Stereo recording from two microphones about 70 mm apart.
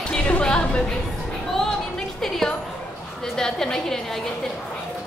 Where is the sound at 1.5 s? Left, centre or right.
Centre.